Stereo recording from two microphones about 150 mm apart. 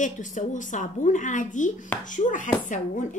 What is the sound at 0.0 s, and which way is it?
A woman's voice, 55° left (ahead or behind).